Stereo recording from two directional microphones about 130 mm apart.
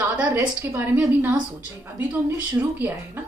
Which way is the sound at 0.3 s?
15° right (ahead or behind).